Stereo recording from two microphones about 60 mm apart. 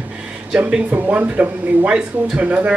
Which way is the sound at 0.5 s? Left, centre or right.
Centre.